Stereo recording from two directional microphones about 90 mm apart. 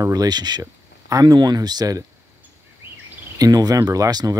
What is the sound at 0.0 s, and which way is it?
Speech, 45° right (ahead or behind).